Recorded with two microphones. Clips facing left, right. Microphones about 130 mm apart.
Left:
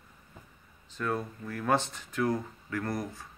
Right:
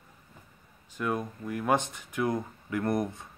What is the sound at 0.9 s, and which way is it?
Speech, 15° right (ahead or behind).